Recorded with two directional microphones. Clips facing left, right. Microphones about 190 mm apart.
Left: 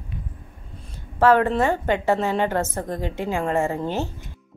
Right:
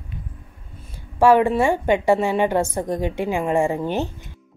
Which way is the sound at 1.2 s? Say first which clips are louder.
Right 2 dB; 10° right (ahead or behind).